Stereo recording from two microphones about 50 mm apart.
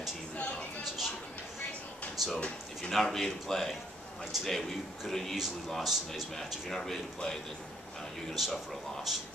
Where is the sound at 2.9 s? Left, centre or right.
Centre.